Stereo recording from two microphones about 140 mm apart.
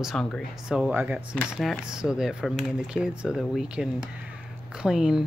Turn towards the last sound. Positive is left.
turn(degrees=-5)  # may be behind; listen again after turning